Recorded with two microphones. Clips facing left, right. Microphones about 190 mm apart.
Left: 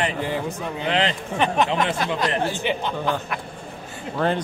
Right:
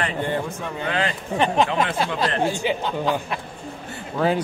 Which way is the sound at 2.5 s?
15° right (ahead or behind).